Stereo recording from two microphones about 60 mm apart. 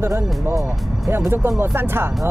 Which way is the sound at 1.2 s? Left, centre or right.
Right.